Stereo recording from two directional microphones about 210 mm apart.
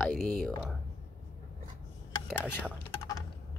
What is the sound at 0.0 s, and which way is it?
Speech, centre (ahead or behind).